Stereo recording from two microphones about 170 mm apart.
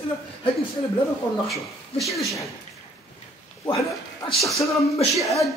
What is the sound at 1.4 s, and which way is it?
Speech, centre (ahead or behind).